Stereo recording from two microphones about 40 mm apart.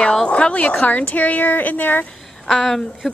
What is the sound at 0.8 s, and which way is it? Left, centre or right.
Speech, left.